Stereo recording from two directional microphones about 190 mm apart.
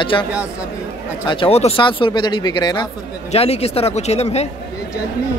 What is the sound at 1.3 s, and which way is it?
Speech, 30° left (ahead or behind).